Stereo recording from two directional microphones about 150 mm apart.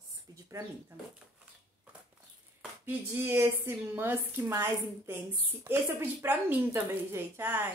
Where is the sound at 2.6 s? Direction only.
15° right (ahead or behind).